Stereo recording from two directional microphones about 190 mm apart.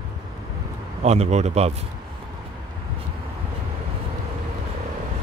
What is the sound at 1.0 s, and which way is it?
Speech, 35° right (ahead or behind).